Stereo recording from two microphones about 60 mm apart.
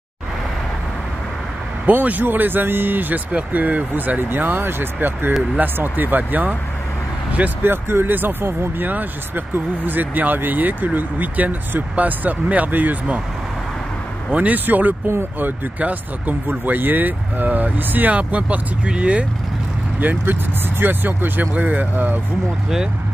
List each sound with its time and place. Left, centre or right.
1.9 s speech: right
14.3 s speech: right